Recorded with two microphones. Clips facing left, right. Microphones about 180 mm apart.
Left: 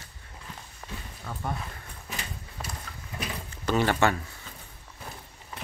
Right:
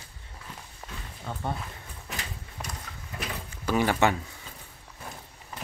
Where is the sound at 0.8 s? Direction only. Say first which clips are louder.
Left 2 dB; 10° right (ahead or behind).